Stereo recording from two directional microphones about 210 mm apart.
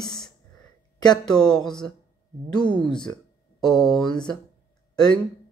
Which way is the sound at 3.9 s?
20° left (ahead or behind).